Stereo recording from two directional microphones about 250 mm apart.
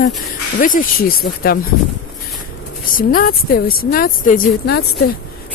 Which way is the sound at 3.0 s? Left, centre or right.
Left.